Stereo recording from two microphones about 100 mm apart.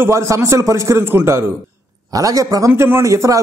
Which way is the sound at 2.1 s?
35° right (ahead or behind).